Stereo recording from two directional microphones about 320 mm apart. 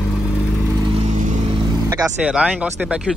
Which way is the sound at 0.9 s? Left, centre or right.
Right.